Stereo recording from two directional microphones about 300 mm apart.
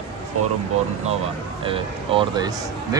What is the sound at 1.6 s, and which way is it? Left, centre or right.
Speech, centre.